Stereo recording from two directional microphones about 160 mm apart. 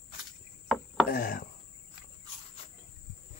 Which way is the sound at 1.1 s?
65° left (ahead or behind).